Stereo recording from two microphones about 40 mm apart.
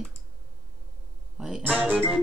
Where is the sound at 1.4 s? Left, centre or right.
Centre.